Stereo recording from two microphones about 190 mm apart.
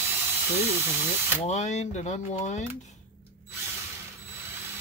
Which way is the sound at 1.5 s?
35° left (ahead or behind).